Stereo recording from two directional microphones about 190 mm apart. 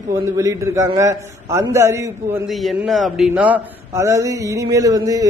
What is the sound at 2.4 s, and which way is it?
A man's voice, centre (ahead or behind).